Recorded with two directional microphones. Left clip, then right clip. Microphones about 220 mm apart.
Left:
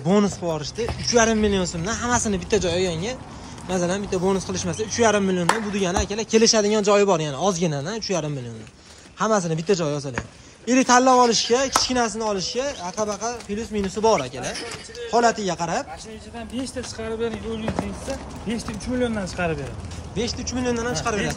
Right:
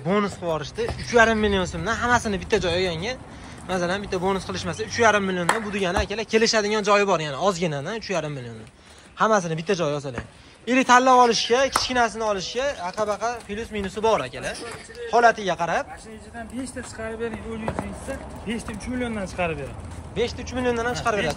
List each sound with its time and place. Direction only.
0.0 s speech: 10° left (ahead or behind)
16.6 s speech: 50° left (ahead or behind)
18.5 s speech: 45° left (ahead or behind)
20.2 s speech: centre (ahead or behind)